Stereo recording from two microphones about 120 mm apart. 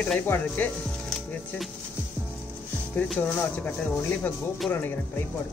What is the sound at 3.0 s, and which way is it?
Speech, centre (ahead or behind).